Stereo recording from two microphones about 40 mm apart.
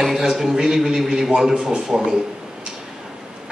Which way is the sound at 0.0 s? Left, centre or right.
Centre.